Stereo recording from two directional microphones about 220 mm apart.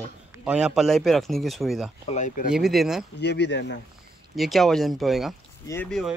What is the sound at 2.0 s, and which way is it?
Speech, 35° left (ahead or behind).